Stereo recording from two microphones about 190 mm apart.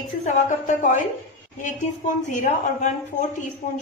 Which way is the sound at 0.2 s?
40° left (ahead or behind).